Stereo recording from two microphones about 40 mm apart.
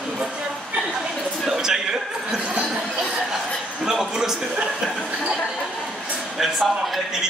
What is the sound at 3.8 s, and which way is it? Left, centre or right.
Speech, centre.